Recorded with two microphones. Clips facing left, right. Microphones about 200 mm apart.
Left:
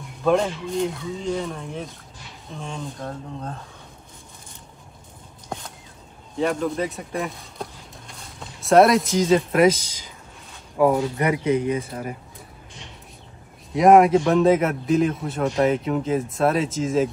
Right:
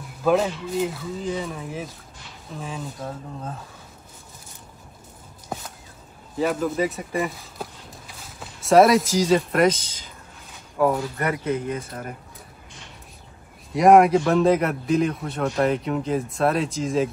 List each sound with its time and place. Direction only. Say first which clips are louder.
0.2 s a man's voice: even; 5° right (ahead or behind)
5.5 s a sound: even; 5° right (ahead or behind)
6.3 s a man's voice: even; 5° right (ahead or behind)
9.8 s speech: left 1 dB; 55° right (ahead or behind)
10.8 s speech: left 3 dB; 10° left (ahead or behind)
13.7 s a man's voice: left 1 dB; centre (ahead or behind)